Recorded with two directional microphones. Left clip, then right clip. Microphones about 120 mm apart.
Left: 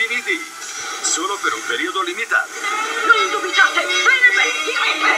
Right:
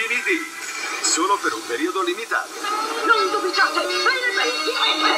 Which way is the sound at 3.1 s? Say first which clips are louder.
Left 3 dB; 25° left (ahead or behind).